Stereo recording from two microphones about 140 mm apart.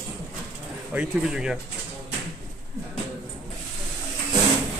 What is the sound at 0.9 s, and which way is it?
Speech, 5° right (ahead or behind).